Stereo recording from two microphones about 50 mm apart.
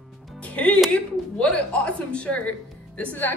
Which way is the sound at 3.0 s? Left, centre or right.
Left.